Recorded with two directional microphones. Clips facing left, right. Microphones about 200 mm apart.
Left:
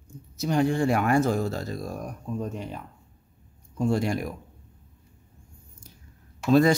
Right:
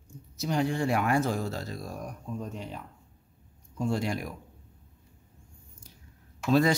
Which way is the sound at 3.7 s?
50° left (ahead or behind).